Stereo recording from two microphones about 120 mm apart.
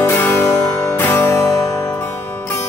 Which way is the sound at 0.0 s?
20° left (ahead or behind).